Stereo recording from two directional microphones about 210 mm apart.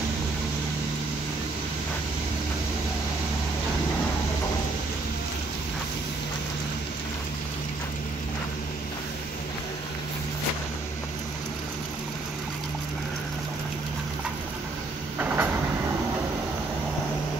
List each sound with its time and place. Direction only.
15.1 s train: 10° right (ahead or behind)